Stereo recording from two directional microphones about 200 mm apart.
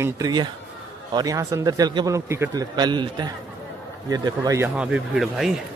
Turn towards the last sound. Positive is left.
turn(degrees=0)  # may be behind; listen again after turning